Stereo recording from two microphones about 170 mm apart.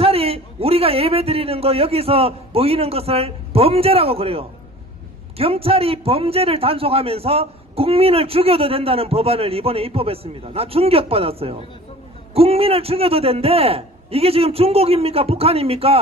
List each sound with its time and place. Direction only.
0.0 s a man's voice: 35° right (ahead or behind)